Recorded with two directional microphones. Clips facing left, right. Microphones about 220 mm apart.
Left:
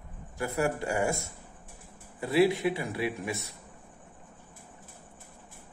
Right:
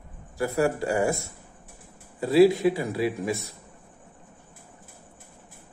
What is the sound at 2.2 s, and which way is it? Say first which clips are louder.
Speech: right 6 dB; 35° right (ahead or behind).